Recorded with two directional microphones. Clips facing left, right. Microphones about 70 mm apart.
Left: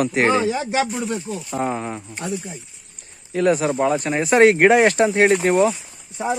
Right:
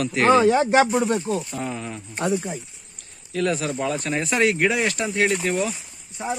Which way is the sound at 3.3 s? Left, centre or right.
Left.